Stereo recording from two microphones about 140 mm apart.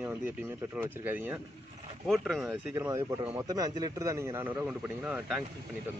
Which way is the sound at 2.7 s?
20° right (ahead or behind).